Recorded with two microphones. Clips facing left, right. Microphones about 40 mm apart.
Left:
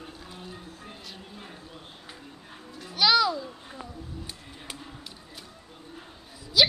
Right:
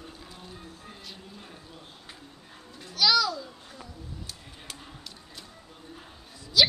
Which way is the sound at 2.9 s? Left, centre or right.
Left.